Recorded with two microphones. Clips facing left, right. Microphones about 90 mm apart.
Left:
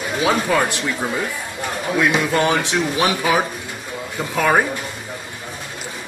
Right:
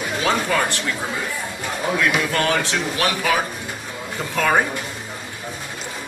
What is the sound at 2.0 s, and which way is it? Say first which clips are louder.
Speech: left 4 dB; 20° left (ahead or behind).